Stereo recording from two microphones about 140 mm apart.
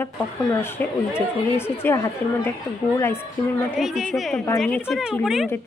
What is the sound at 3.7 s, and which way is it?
A woman's voice, 5° right (ahead or behind).